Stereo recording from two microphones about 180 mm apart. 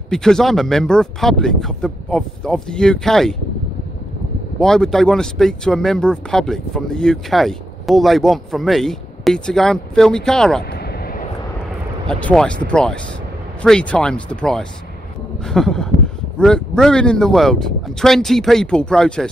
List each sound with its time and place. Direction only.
0.1 s speech: 5° left (ahead or behind)
4.6 s speech: 5° left (ahead or behind)
10.7 s vehicle: 60° left (ahead or behind)
12.1 s speech: 5° left (ahead or behind)